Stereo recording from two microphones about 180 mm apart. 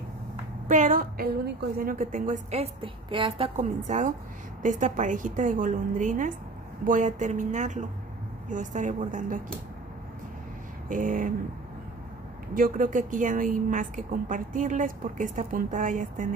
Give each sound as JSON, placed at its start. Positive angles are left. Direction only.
{"t": 0.7, "sound": "a woman's voice", "side_deg": -45}
{"t": 3.6, "sound": "a woman's voice", "side_deg": -45}
{"t": 10.9, "sound": "a woman's voice", "side_deg": -45}
{"t": 12.5, "sound": "a woman's voice", "side_deg": -50}